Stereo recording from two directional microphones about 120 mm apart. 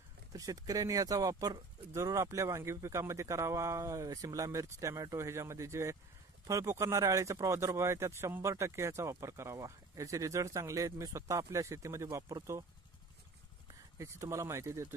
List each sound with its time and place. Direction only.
0.3 s speech: 30° right (ahead or behind)
13.9 s speech: 25° right (ahead or behind)